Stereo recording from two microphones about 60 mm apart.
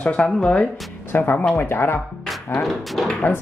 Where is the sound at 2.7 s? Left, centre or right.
Centre.